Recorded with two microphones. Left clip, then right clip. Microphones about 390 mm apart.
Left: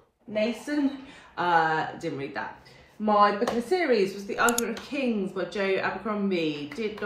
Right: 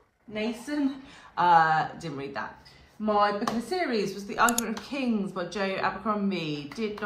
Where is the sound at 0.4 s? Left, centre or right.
Centre.